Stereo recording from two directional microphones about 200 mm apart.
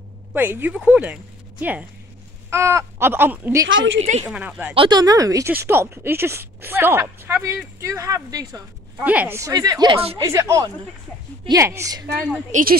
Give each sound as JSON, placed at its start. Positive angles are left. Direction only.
{"t": 0.3, "sound": "speech", "side_deg": -10}
{"t": 3.6, "sound": "a woman's voice", "side_deg": -70}
{"t": 4.3, "sound": "speech", "side_deg": -5}
{"t": 4.7, "sound": "speech", "side_deg": -20}
{"t": 10.2, "sound": "speech", "side_deg": -15}
{"t": 12.4, "sound": "a woman's voice", "side_deg": -40}